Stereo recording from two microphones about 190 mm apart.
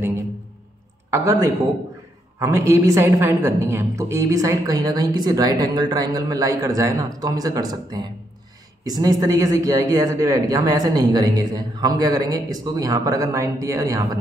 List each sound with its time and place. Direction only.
1.1 s a woman's voice: 15° right (ahead or behind)